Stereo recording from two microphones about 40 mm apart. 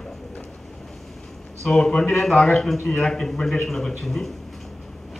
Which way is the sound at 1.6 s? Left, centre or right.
Centre.